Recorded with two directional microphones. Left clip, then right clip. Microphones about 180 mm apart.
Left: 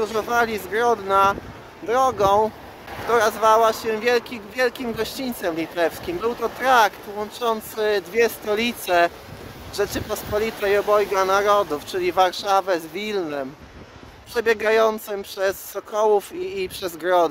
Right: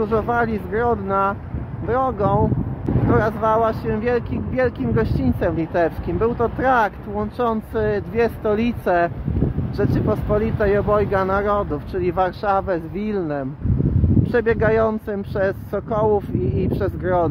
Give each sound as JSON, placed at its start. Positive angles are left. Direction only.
{"t": 0.0, "sound": "speech", "side_deg": 15}